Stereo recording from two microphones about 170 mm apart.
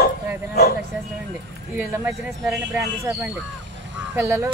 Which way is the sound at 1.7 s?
15° right (ahead or behind).